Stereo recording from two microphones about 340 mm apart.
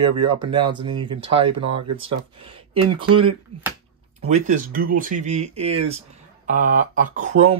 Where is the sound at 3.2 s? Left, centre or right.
Centre.